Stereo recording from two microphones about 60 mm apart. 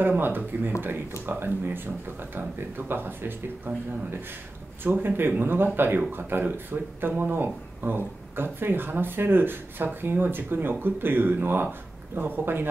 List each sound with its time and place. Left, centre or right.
0.0 s speech: right
2.9 s speech: right
4.8 s speech: right